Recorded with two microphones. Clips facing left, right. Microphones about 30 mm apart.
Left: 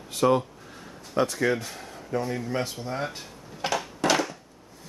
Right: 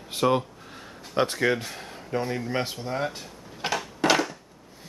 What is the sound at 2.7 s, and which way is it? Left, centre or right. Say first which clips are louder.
Speech: right 2 dB; centre.